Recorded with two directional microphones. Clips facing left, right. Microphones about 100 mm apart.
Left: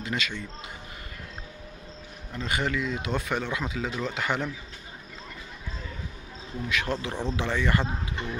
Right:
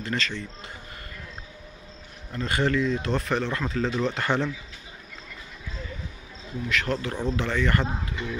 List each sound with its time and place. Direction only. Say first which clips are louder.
0.0 s speech: right 2 dB; 10° left (ahead or behind)
2.3 s speech: right 4 dB; 5° left (ahead or behind)
6.7 s speech: right 2 dB; 20° left (ahead or behind)